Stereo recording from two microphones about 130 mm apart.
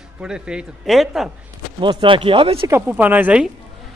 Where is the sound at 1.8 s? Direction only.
40° right (ahead or behind).